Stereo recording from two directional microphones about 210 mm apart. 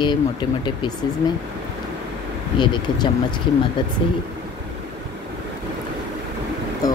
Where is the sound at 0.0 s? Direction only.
20° left (ahead or behind).